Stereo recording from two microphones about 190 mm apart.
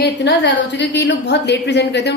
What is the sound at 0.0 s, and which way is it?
A woman's voice, 65° left (ahead or behind).